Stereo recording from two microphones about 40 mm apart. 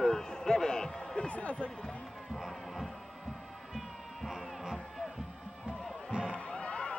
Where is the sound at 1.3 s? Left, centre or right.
Left.